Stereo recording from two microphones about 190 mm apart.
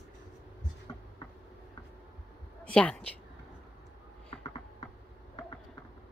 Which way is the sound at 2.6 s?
5° left (ahead or behind).